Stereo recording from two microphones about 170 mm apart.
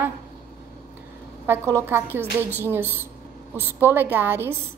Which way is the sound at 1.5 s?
15° right (ahead or behind).